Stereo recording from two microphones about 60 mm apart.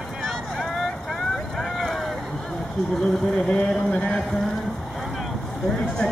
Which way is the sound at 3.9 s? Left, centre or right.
Centre.